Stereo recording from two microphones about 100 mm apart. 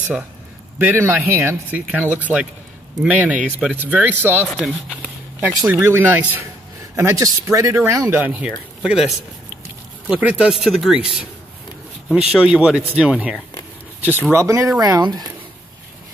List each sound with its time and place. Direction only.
0.8 s speech: 20° right (ahead or behind)
4.6 s speech: centre (ahead or behind)
5.4 s speech: 25° right (ahead or behind)
8.1 s speech: 15° right (ahead or behind)
14.3 s speech: 30° right (ahead or behind)